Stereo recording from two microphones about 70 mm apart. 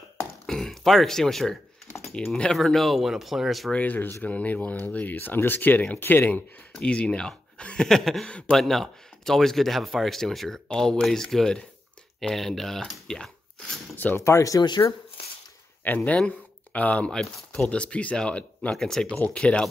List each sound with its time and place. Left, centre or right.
0.5 s speech: centre
3.7 s speech: left
6.7 s speech: centre
8.3 s speech: centre
8.5 s speech: centre
12.9 s a sound: centre
13.9 s speech: left
14.2 s speech: left
15.8 s speech: left; by 19.6 s centre